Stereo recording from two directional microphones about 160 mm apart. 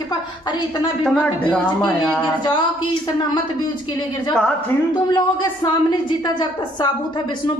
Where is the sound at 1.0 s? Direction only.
10° left (ahead or behind).